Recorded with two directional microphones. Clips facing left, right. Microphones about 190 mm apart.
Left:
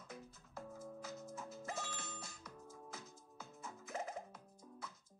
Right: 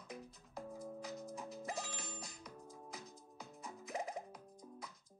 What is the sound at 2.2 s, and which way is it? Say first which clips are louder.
Music: right 2 dB; 15° right (ahead or behind).